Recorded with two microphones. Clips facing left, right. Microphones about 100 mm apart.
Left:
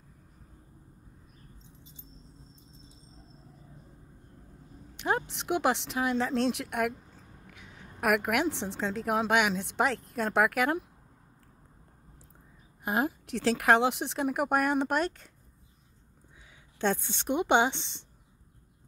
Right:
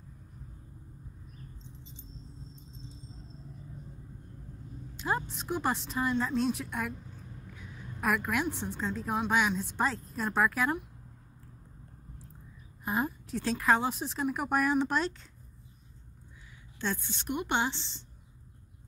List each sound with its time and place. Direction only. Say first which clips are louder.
4.9 s a woman's voice: left 3 dB; 70° left (ahead or behind)
12.8 s a woman's voice: left 3 dB; 80° left; by 15.2 s 55° left (ahead or behind)
16.8 s a woman's voice: left 6 dB; 70° left (ahead or behind)